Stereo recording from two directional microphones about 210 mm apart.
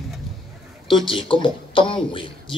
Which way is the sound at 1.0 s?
25° left (ahead or behind).